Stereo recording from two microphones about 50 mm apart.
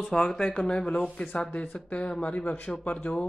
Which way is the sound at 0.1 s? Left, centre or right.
Centre.